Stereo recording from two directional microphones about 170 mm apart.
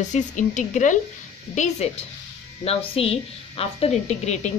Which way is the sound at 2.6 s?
35° left (ahead or behind).